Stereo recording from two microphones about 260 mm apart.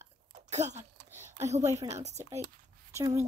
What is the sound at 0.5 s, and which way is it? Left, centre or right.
Speech, right.